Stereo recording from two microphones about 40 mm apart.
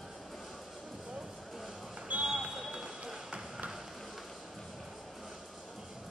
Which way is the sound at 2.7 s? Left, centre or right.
Centre.